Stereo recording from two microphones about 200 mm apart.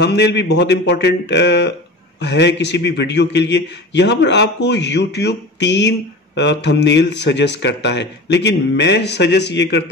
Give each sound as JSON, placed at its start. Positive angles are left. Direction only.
{"t": 0.0, "sound": "a man's voice", "side_deg": 60}